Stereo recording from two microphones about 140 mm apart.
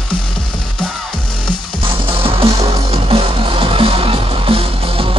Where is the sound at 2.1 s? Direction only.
40° right (ahead or behind).